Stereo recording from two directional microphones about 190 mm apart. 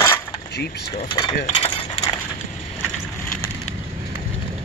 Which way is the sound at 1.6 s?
30° left (ahead or behind).